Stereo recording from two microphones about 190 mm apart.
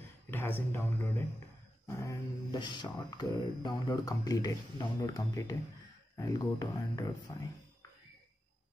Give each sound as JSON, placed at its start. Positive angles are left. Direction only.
{"t": 0.3, "sound": "speech", "side_deg": 10}
{"t": 1.9, "sound": "speech", "side_deg": 15}